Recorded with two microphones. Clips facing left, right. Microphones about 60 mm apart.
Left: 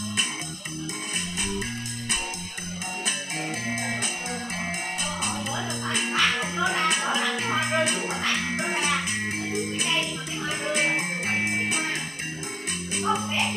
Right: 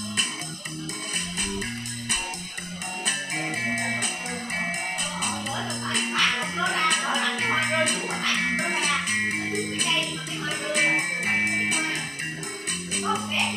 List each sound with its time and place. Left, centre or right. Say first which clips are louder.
5.2 s music: even; centre
7.3 s music: right 1 dB; right
7.6 s music: even; centre
12.9 s music: left 1 dB; centre